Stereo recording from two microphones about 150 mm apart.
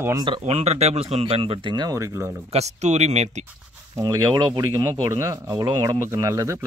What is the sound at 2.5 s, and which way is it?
Speech, 50° right (ahead or behind).